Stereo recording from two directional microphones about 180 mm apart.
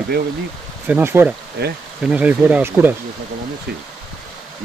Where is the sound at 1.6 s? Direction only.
65° right (ahead or behind).